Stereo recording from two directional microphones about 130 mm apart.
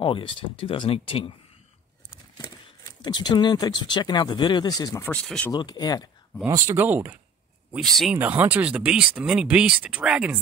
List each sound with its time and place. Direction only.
0.0 s speech: 40° left (ahead or behind)
2.3 s speech: 35° left (ahead or behind)
5.0 s speech: 5° left (ahead or behind)
5.5 s speech: 35° left (ahead or behind)
6.5 s speech: 20° right (ahead or behind)